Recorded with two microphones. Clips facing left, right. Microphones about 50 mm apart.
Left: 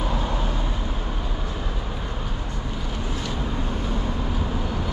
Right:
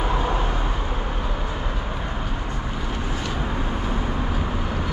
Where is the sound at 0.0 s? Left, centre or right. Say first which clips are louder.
Right 3 dB; right.